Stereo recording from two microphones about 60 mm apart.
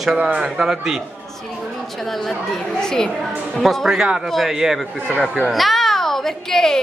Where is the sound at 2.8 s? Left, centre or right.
Centre.